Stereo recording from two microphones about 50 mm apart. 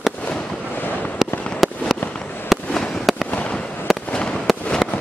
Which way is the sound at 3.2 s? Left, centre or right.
Left.